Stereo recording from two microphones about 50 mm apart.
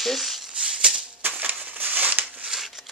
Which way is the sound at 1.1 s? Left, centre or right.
Right.